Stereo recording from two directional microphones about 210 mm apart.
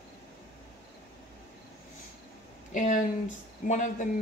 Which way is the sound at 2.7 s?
40° left (ahead or behind).